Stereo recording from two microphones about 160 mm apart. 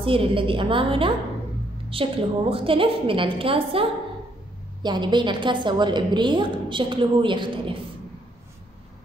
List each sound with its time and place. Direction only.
0.0 s a woman's voice: 35° right (ahead or behind)